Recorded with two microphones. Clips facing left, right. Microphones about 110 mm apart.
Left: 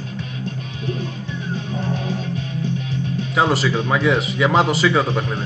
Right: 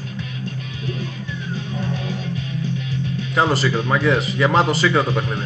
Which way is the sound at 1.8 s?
30° left (ahead or behind).